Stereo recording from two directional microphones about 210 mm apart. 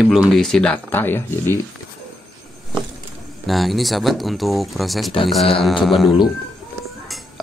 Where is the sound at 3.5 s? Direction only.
Centre (ahead or behind).